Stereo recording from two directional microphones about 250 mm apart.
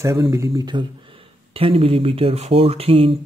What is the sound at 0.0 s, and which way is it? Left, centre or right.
Speech, centre.